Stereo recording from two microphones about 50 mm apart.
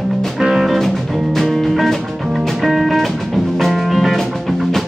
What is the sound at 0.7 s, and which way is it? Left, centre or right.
Music, centre.